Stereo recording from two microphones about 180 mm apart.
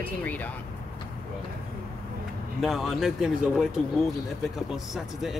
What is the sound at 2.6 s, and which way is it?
Speech, centre (ahead or behind).